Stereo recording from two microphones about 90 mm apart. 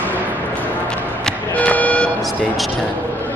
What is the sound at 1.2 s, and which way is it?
Music, 10° left (ahead or behind).